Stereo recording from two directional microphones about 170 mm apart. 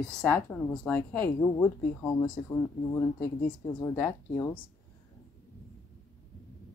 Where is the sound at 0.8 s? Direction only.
10° left (ahead or behind).